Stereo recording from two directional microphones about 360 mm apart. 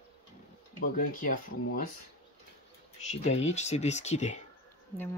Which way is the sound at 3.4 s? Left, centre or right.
Centre.